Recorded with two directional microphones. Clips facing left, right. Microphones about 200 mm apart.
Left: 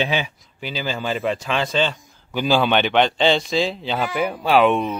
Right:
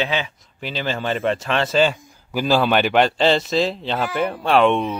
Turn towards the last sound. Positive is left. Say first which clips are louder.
# even
turn(degrees=5)  # may be behind; listen again after turning